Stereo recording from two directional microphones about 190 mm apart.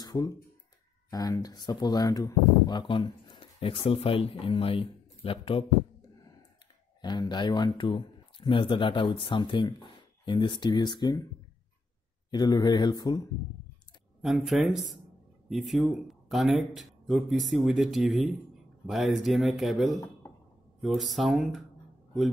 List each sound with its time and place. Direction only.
0.0 s a sound: 20° left (ahead or behind)
1.1 s speech: 20° left (ahead or behind)
7.0 s speech: 20° left (ahead or behind)
12.3 s speech: 20° left (ahead or behind)
14.2 s speech: centre (ahead or behind)